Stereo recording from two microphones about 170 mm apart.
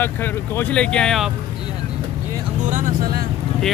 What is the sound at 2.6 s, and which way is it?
Vehicle, 50° right (ahead or behind).